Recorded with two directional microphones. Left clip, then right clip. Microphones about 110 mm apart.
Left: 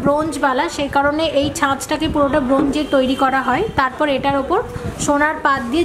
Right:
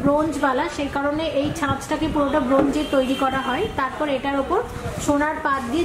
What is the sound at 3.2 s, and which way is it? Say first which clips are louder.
A woman's voice: left 6 dB; 60° left (ahead or behind).